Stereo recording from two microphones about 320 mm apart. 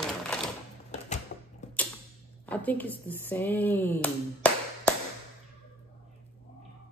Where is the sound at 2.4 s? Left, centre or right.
Centre.